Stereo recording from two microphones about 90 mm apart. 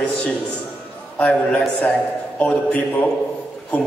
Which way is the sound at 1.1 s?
15° left (ahead or behind).